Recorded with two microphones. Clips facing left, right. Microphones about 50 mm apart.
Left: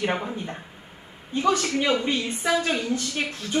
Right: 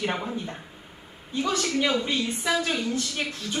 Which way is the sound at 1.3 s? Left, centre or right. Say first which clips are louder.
Left 3 dB; left.